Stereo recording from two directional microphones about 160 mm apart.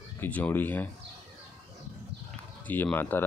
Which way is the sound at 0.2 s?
10° left (ahead or behind).